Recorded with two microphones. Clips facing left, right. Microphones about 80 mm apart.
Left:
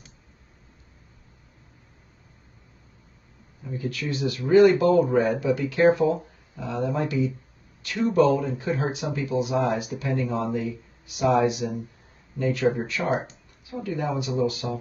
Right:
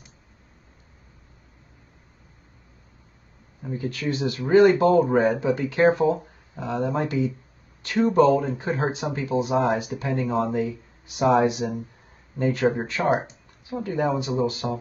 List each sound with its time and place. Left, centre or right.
3.6 s speech: right